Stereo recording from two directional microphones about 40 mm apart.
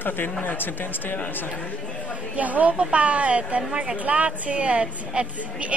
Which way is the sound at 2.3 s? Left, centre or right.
Right.